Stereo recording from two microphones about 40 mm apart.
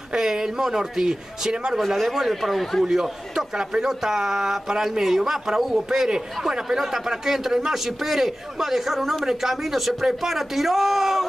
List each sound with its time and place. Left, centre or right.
0.1 s a man's voice: centre
1.9 s a man's voice: centre
2.8 s a man's voice: centre